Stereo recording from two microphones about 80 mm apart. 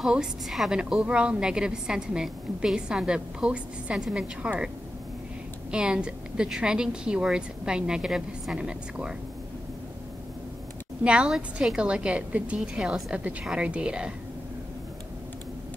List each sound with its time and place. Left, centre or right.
0.0 s a woman's voice: centre
5.7 s a woman's voice: centre
11.1 s a woman's voice: centre
12.5 s a woman's voice: centre